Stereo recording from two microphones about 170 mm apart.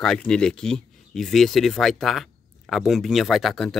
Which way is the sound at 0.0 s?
5° left (ahead or behind).